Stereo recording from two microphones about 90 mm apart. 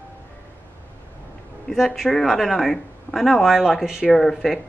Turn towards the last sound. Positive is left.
turn(degrees=5)  # may be behind; listen again after turning